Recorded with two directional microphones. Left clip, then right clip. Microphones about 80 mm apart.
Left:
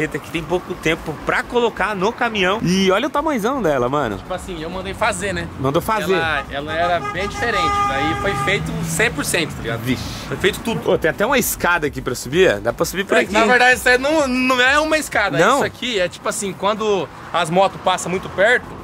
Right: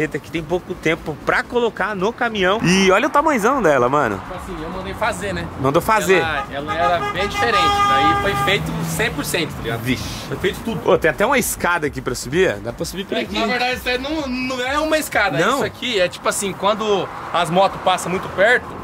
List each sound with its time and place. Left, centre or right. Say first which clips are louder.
0.0 s speech: even; centre
7.2 s speech: right 3 dB; centre
12.6 s speech: left 7 dB; left
14.7 s speech: left 2 dB; centre
15.3 s speech: left 3 dB; centre